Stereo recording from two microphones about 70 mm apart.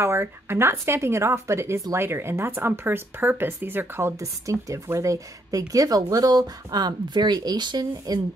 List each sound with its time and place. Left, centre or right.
0.0 s a woman's voice: right
4.2 s speech: right